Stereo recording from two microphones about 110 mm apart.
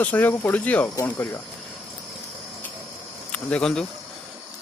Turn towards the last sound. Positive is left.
turn(degrees=10)  # may be behind; listen again after turning